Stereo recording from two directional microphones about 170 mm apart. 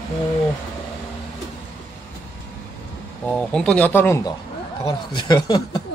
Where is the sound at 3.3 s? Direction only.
5° left (ahead or behind).